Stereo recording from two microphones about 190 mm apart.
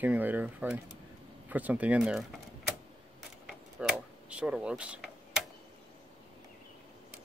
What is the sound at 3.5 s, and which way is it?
Mechanisms, 5° right (ahead or behind).